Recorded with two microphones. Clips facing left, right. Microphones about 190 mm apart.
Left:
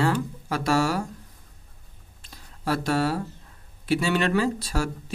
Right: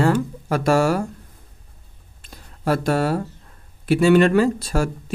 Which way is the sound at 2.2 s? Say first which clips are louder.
Right 6 dB; 50° right (ahead or behind).